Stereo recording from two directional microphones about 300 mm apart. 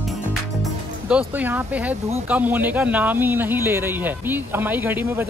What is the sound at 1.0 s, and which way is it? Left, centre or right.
Speech, centre.